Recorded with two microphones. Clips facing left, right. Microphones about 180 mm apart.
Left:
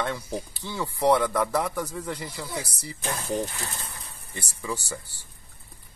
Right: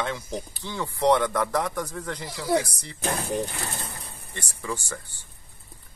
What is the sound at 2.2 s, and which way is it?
Speech, 85° right.